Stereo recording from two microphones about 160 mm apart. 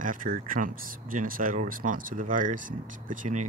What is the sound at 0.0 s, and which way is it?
Speech, 55° right (ahead or behind).